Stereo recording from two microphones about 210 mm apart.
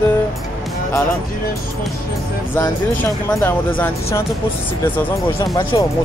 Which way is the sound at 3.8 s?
10° left (ahead or behind).